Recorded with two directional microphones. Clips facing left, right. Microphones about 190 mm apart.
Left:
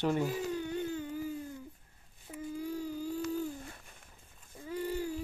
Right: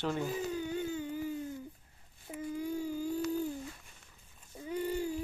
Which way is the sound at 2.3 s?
15° right (ahead or behind).